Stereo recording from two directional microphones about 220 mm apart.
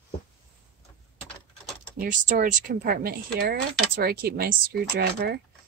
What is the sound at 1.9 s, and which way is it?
Speech, 40° right (ahead or behind).